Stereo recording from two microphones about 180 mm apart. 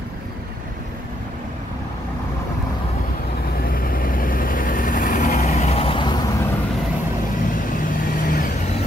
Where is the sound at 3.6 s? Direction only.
55° left (ahead or behind); by 6.3 s 25° left (ahead or behind).